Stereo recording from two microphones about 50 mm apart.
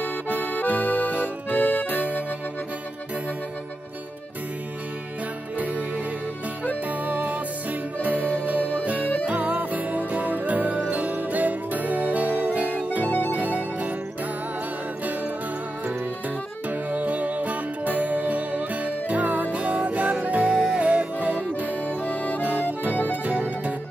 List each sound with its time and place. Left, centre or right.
0.0 s accordion: left
0.7 s music: left
6.9 s music: right
13.0 s music: left
13.4 s music: right
16.6 s music: right
20.4 s music: centre
20.7 s music: right
21.8 s music: left
22.4 s accordion: right
23.2 s music: right